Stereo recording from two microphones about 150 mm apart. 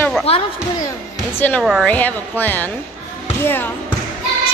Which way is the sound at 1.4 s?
10° left (ahead or behind).